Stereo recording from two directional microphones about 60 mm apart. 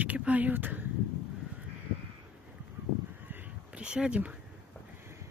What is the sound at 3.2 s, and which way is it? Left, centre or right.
Crow, right.